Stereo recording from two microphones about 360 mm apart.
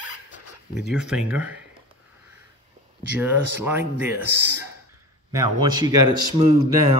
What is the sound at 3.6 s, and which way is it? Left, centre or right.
Speech, centre.